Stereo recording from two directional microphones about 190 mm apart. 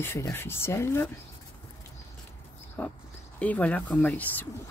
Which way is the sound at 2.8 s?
5° left (ahead or behind).